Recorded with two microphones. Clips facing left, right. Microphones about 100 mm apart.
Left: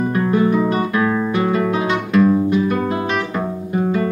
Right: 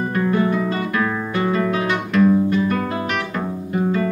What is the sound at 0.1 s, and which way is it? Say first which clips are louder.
Music: left 2 dB; 15° left (ahead or behind).